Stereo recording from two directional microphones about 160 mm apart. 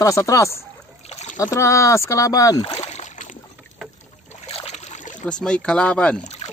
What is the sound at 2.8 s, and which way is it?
Boat, 45° left (ahead or behind).